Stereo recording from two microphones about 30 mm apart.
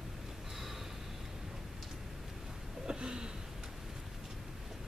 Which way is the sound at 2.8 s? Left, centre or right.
Right.